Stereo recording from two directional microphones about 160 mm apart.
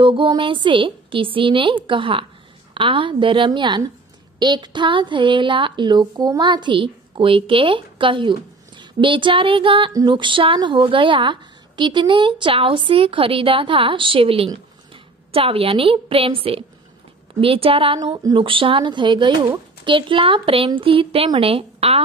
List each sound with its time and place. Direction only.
0.0 s a woman's voice: 30° right (ahead or behind)